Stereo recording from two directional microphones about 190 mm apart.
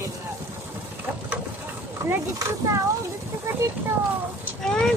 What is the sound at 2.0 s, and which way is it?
Speech, 15° right (ahead or behind).